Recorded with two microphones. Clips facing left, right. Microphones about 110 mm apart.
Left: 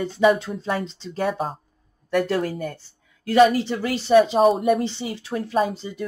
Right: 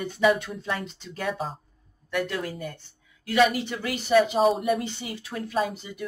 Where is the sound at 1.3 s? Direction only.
45° left (ahead or behind).